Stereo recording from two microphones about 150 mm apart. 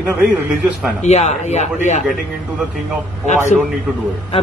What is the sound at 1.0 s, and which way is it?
Speech, 50° left (ahead or behind).